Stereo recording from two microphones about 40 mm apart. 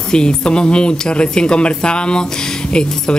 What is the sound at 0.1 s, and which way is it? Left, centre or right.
Speech, left.